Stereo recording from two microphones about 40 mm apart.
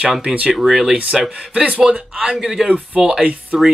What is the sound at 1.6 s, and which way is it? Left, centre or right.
Speech, right.